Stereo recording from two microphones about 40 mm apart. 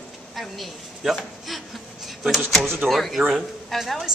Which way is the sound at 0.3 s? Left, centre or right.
Centre.